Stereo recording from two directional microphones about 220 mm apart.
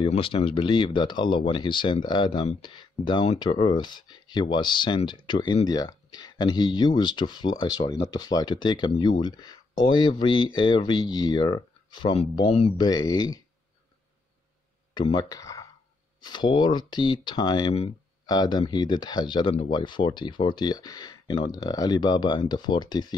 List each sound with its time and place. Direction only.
0.0 s speech: 25° left (ahead or behind)
15.0 s speech: 20° left (ahead or behind)